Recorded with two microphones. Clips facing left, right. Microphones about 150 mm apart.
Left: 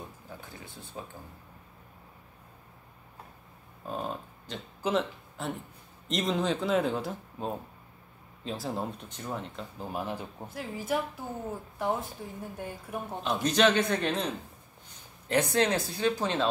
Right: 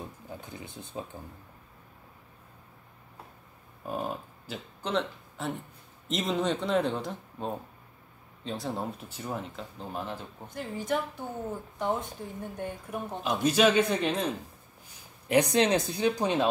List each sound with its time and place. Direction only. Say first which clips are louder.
0.3 s a sound: right 3 dB; 20° right (ahead or behind)
3.8 s speech: right 2 dB; 5° right (ahead or behind)
13.3 s speech: right 1 dB; 10° right (ahead or behind)
15.2 s speech: right 3 dB; 15° right (ahead or behind)